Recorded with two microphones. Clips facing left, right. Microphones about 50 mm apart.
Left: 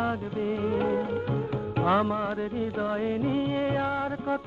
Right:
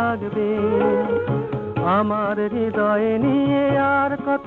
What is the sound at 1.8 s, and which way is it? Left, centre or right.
Music, centre.